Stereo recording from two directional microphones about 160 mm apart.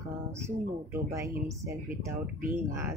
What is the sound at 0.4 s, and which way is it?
Speech, 15° right (ahead or behind).